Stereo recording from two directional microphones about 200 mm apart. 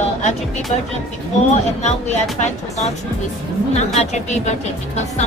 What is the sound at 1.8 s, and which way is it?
Speech, 35° left (ahead or behind).